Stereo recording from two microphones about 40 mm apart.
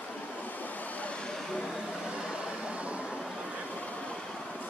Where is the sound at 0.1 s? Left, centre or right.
Left.